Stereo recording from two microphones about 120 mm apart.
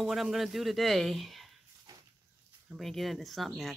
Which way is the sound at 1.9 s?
30° right (ahead or behind).